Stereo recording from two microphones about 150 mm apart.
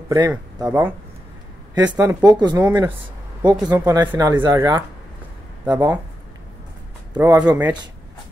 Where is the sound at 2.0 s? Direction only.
20° right (ahead or behind).